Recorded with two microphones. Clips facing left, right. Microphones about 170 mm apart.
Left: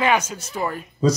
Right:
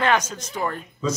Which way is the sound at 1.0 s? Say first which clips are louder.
Left 6 dB; 35° left (ahead or behind).